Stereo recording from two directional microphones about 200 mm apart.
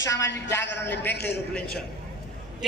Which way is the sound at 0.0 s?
15° left (ahead or behind).